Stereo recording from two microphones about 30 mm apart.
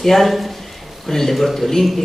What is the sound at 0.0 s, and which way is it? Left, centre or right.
A man's voice, centre.